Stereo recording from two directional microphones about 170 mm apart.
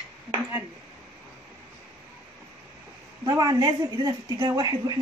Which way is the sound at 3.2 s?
20° right (ahead or behind).